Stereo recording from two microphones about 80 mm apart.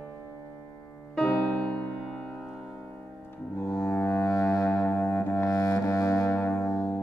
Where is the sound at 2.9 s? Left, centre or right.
Left.